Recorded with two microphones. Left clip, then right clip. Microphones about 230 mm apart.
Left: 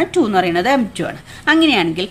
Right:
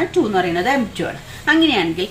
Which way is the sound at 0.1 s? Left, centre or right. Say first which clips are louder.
Left 2 dB; left.